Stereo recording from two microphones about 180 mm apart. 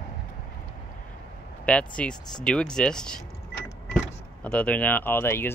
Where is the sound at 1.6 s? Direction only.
5° left (ahead or behind).